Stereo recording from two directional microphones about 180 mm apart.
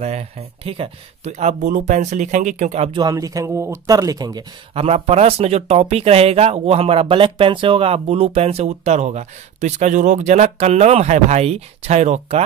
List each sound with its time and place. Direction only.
0.0 s speech: 35° right (ahead or behind)
3.0 s speech: 20° right (ahead or behind)
4.7 s speech: 35° right (ahead or behind)